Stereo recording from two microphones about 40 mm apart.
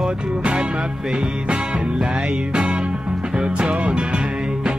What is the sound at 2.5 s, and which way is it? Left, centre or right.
Music, right.